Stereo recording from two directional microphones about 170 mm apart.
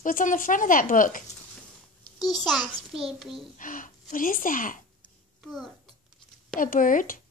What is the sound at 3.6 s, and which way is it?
A child's voice, 50° left (ahead or behind).